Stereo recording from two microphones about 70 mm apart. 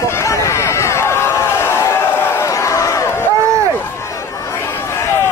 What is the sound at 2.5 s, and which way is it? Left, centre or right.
Crowd, left.